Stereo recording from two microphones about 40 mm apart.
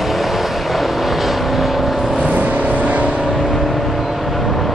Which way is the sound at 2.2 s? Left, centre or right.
Right.